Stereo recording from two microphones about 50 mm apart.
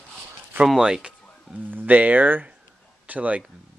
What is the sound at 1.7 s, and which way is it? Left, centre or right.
Speech, right.